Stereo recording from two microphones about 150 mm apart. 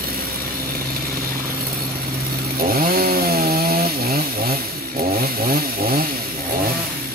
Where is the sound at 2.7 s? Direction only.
80° right.